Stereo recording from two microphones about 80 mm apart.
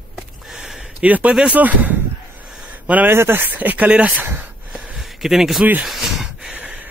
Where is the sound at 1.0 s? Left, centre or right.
Centre.